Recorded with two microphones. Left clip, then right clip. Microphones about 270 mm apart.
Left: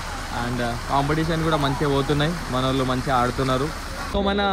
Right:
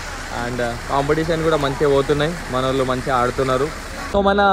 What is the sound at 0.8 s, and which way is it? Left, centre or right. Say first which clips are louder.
Speech: right 4 dB; right.